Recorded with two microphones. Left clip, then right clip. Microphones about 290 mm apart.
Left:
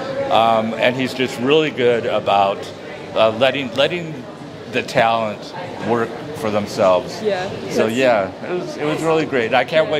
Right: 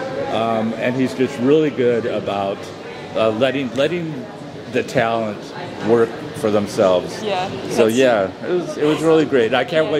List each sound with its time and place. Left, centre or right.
0.3 s a man's voice: left
7.3 s speech: right
7.7 s a man's voice: left